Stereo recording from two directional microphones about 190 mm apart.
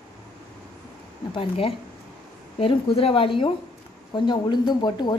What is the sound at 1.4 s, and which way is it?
A woman's voice, 30° left (ahead or behind).